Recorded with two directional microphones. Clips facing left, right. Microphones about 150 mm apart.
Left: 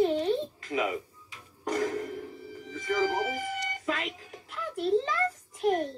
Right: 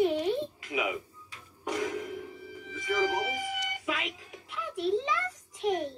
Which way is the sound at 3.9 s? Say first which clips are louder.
Left 2 dB; 5° right (ahead or behind).